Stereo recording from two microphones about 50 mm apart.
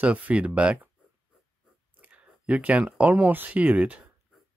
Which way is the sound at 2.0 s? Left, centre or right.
Right.